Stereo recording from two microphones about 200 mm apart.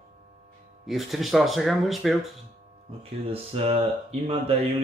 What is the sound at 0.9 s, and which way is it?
A man's voice, centre (ahead or behind).